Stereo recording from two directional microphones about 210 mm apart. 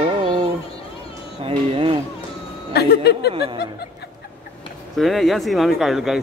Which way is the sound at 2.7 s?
50° left (ahead or behind).